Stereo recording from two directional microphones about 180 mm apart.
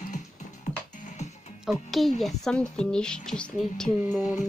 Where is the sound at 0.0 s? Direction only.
45° left (ahead or behind).